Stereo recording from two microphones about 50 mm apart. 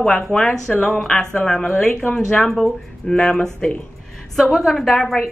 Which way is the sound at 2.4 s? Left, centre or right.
Centre.